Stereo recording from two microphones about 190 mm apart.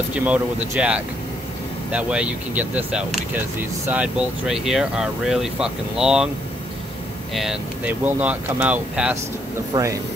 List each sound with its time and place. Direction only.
0.1 s speech: 5° right (ahead or behind)
7.3 s speech: 5° right (ahead or behind)
9.7 s speech: 20° right (ahead or behind)